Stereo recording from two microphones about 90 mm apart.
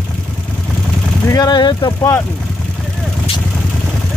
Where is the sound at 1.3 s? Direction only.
50° left (ahead or behind).